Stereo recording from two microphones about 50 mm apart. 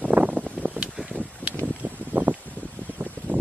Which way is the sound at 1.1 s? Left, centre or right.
Right.